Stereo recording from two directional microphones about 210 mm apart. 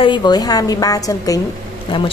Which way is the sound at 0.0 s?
20° left (ahead or behind).